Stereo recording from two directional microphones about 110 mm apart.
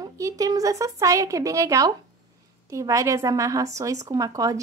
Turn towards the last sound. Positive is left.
turn(degrees=-30)  # may be behind; listen again after turning